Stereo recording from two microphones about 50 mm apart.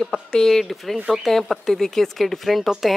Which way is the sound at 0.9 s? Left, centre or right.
Centre.